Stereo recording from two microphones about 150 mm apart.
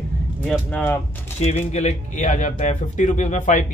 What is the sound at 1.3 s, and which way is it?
A man's voice, 50° left (ahead or behind).